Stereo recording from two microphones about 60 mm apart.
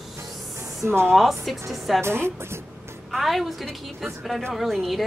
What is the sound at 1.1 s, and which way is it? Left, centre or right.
Speech, centre.